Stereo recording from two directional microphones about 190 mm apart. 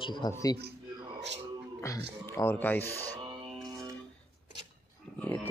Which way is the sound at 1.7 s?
15° left (ahead or behind).